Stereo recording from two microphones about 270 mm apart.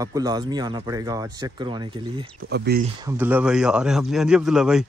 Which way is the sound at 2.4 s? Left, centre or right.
Right.